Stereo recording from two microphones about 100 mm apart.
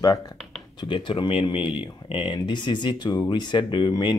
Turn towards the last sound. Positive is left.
turn(degrees=50)  # may be behind; listen again after turning